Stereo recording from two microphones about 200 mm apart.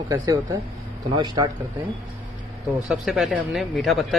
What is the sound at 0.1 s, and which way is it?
A man's voice, 15° right (ahead or behind).